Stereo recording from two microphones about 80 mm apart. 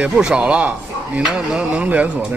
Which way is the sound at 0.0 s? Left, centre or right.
Centre.